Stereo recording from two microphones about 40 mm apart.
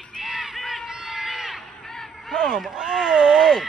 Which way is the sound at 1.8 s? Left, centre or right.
Centre.